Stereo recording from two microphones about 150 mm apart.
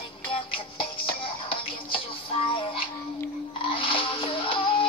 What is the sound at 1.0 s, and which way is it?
Music, 35° left (ahead or behind).